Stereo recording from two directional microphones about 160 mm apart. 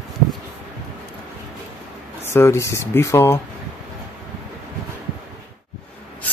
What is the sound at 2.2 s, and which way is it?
Speech, 15° left (ahead or behind).